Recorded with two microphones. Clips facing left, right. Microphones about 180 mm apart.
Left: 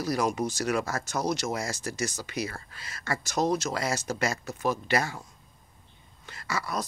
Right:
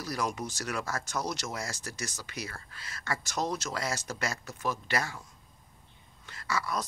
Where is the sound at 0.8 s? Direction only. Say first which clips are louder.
Left 4 dB; 40° left (ahead or behind).